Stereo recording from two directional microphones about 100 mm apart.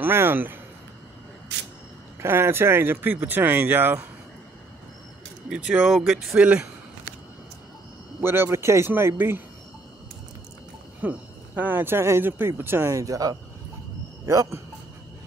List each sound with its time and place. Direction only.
0.0 s speech: 20° right (ahead or behind)
2.2 s speech: 25° right (ahead or behind)
5.5 s speech: 10° right (ahead or behind)
8.2 s speech: 25° right (ahead or behind)
11.0 s speech: 15° right (ahead or behind); by 14.6 s 35° right (ahead or behind)